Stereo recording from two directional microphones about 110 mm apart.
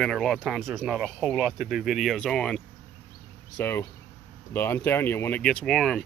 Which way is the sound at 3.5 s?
20° left (ahead or behind).